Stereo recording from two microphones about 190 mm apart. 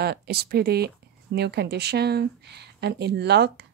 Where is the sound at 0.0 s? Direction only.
55° right (ahead or behind).